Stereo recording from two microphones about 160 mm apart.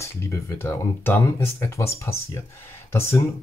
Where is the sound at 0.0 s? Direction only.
15° left (ahead or behind).